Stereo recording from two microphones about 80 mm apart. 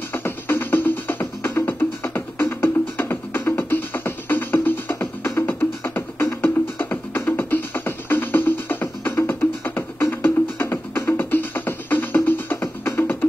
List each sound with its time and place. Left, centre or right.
0.1 s music: left